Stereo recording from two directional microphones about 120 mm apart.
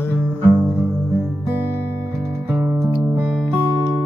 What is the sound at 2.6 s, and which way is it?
Music, 35° right (ahead or behind).